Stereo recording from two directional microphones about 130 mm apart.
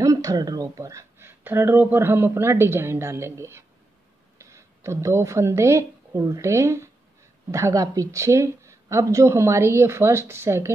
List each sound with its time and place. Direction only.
0.0 s speech: 25° right (ahead or behind)